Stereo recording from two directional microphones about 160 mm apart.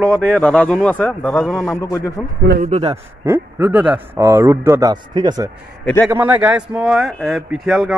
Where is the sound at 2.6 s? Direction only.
40° right (ahead or behind).